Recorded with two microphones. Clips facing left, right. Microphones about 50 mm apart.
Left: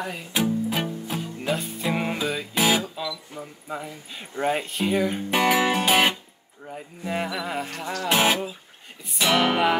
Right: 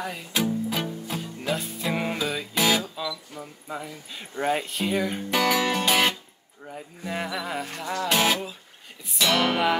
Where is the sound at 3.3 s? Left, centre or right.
Centre.